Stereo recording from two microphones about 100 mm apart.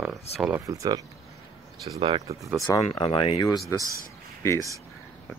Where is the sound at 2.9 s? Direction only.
60° left (ahead or behind).